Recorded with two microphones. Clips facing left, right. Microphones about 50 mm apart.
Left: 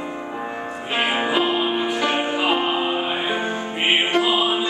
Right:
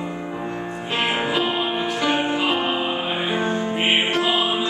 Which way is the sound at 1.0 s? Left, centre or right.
Centre.